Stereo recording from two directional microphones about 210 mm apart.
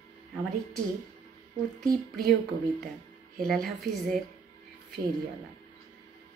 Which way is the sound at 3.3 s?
Centre (ahead or behind).